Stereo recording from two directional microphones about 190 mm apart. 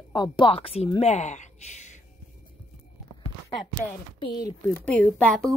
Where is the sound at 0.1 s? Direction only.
25° left (ahead or behind).